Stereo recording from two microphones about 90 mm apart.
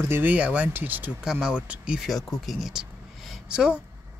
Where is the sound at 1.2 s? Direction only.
5° right (ahead or behind).